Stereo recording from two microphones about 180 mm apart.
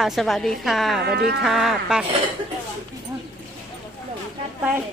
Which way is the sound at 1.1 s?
65° right (ahead or behind).